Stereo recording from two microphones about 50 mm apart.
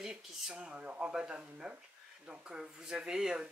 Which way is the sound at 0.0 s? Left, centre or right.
Centre.